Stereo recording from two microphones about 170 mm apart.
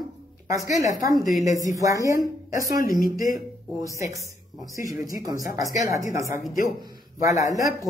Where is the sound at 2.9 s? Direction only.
55° left (ahead or behind).